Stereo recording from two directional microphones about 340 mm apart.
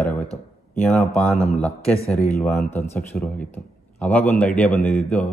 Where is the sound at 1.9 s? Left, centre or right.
Centre.